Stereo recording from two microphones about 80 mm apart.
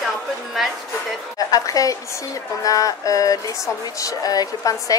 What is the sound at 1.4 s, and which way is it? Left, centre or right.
A woman's voice, left.